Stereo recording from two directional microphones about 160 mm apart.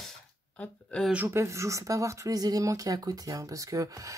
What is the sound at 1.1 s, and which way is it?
Speech, 15° right (ahead or behind).